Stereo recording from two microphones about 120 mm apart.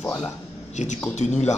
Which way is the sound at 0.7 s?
80° left.